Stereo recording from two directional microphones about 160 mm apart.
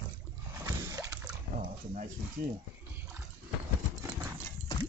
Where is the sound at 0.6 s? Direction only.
20° right (ahead or behind).